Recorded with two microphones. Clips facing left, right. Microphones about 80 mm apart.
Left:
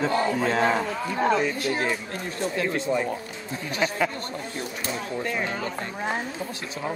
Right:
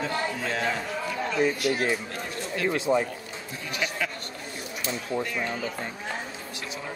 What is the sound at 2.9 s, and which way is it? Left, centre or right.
Speech, right.